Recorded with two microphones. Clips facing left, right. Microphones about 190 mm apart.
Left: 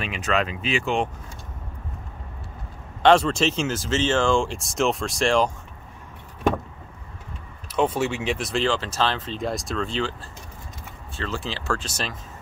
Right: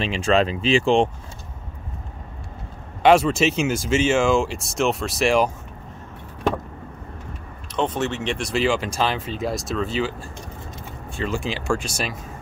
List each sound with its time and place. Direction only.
0.0 s speech: 30° right (ahead or behind)
3.0 s speech: 10° right (ahead or behind)
7.7 s speech: 10° left (ahead or behind)
8.6 s speech: 10° right (ahead or behind)
11.1 s speech: 15° right (ahead or behind)